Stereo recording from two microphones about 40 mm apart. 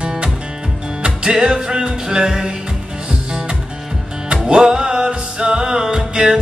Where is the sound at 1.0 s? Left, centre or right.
Right.